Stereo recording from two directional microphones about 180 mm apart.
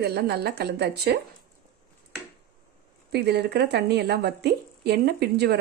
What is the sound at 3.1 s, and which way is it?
A woman's voice, 65° right (ahead or behind).